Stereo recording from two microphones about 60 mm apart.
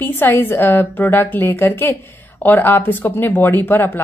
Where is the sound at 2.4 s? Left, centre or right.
Left.